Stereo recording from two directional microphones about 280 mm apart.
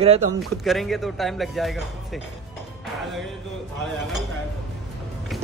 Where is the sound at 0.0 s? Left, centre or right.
Right.